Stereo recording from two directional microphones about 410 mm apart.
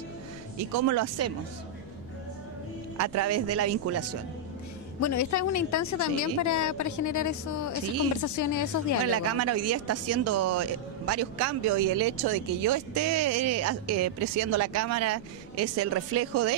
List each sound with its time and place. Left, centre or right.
0.6 s speech: right
3.0 s speech: right
5.0 s a woman's voice: left
9.1 s speech: right